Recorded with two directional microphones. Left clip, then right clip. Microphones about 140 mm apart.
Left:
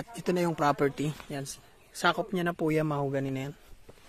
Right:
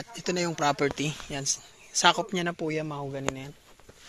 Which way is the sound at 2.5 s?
40° left (ahead or behind).